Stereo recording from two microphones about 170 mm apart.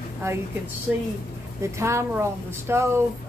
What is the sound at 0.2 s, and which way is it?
Speech, 15° right (ahead or behind).